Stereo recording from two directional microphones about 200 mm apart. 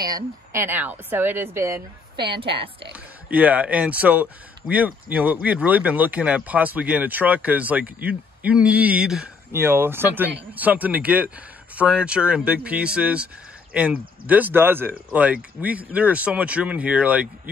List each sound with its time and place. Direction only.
0.1 s speech: 15° right (ahead or behind)
2.2 s a woman's voice: 25° right (ahead or behind)
2.9 s speech: 5° right (ahead or behind)